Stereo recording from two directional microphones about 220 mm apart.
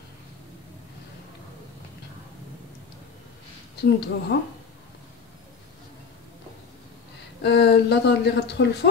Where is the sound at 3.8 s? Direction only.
50° left (ahead or behind).